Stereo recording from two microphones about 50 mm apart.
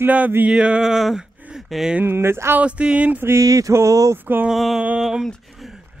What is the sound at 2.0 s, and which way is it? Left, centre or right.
Speech, right.